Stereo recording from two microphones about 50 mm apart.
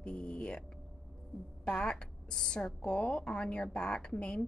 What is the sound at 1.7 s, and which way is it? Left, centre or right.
Speech, centre.